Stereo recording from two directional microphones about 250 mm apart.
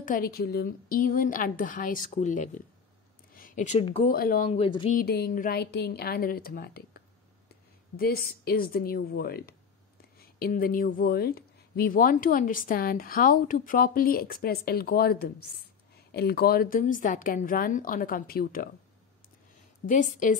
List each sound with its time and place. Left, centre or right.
0.0 s a woman's voice: left
4.1 s speech: left
4.9 s a woman's voice: left
8.0 s a woman's voice: left
19.9 s a woman's voice: left